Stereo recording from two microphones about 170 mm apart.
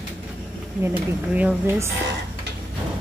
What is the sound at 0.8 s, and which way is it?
Speech, 10° right (ahead or behind).